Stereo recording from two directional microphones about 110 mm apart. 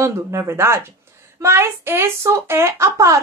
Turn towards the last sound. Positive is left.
turn(degrees=-25)  # may be behind; listen again after turning